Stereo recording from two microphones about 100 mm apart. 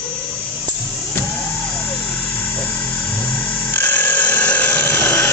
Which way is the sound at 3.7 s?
15° left (ahead or behind).